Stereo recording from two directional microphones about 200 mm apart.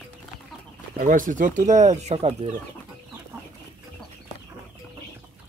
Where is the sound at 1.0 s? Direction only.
40° right (ahead or behind).